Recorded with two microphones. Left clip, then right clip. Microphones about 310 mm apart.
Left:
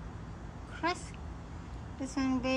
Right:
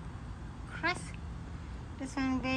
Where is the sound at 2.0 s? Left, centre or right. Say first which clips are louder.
Left 1 dB; centre.